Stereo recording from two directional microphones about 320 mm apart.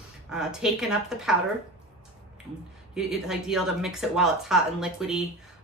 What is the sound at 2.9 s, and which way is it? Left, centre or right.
A woman's voice, centre.